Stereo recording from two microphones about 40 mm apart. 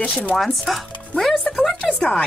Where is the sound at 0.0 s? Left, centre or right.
Left.